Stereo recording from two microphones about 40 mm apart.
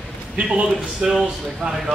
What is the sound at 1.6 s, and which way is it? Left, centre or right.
Speech, centre.